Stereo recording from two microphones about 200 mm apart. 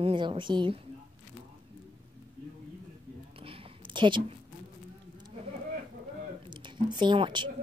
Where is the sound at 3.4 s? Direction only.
25° right (ahead or behind).